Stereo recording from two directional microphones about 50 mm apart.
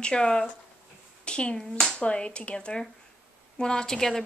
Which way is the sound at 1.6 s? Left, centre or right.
Centre.